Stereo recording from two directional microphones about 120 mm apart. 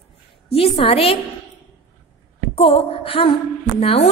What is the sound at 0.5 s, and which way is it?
Speech, 50° left (ahead or behind).